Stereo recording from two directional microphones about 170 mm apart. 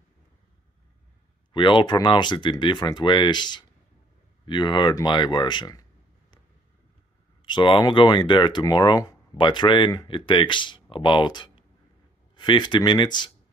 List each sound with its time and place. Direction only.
1.5 s speech: 30° left (ahead or behind)
7.4 s speech: 25° left (ahead or behind)